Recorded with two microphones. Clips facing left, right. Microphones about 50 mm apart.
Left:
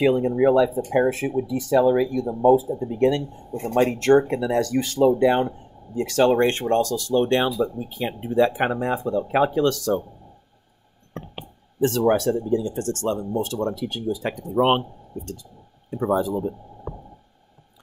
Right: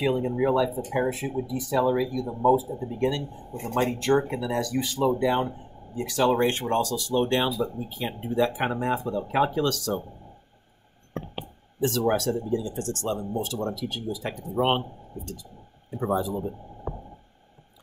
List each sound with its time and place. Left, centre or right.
0.4 s speech: left
1.1 s speech: left
6.3 s speech: left
11.8 s speech: left
16.0 s speech: left